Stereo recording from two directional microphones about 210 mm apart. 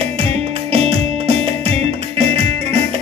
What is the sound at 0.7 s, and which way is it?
Music, 30° right (ahead or behind).